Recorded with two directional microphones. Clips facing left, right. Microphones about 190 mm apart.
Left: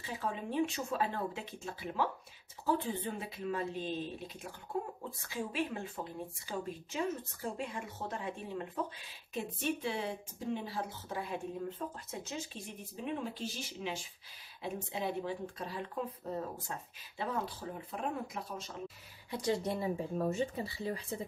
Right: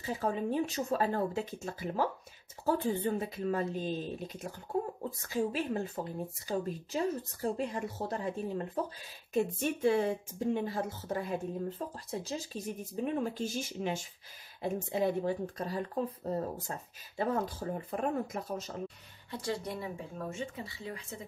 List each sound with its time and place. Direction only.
0.0 s speech: 40° right (ahead or behind)
19.3 s speech: 20° left (ahead or behind)